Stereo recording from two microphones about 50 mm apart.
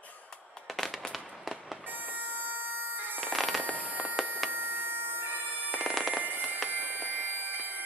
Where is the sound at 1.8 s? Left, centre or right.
Right.